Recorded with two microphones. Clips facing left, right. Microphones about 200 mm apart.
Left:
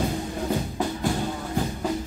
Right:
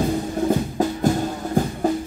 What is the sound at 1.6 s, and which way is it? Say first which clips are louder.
Music: right 6 dB; 45° right (ahead or behind).